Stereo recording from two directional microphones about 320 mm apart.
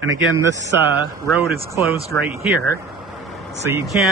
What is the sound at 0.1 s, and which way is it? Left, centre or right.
Speech, right.